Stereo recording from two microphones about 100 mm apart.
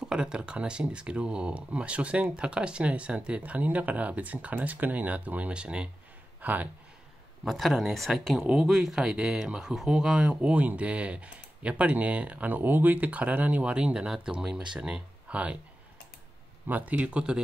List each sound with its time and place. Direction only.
0.0 s speech: 10° right (ahead or behind)
7.4 s speech: centre (ahead or behind)
16.6 s speech: 15° right (ahead or behind)